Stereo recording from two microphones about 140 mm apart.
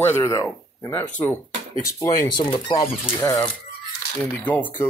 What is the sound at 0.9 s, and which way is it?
Speech, 10° left (ahead or behind).